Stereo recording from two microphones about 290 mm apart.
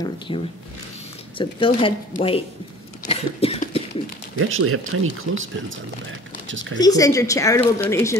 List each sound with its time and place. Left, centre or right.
0.3 s a woman's voice: centre
3.1 s cough: centre
4.4 s speech: right
6.8 s a woman's voice: centre